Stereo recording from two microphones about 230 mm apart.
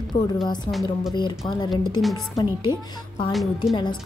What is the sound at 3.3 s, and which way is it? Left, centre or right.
Speech, centre.